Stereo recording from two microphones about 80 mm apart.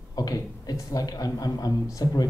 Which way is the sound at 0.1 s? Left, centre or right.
Left.